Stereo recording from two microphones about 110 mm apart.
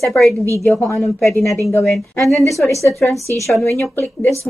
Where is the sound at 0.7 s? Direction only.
25° left (ahead or behind).